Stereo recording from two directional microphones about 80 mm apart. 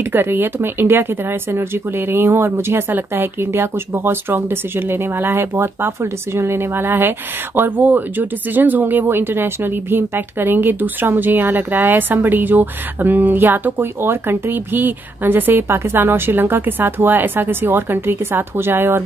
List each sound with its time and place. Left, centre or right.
0.1 s a woman's voice: right